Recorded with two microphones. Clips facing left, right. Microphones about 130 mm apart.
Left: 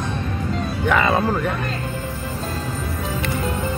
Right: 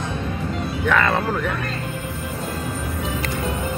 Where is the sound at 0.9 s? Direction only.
10° left (ahead or behind).